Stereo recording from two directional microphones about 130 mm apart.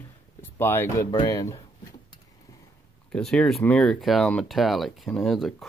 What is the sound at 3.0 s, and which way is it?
Speech, 5° left (ahead or behind).